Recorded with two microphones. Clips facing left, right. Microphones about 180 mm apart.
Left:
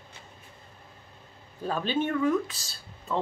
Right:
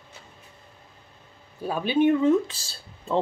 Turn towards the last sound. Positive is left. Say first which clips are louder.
# right 5 dB
turn(degrees=-30)  # may be behind; listen again after turning